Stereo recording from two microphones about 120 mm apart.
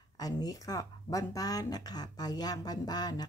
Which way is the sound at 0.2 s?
30° left (ahead or behind).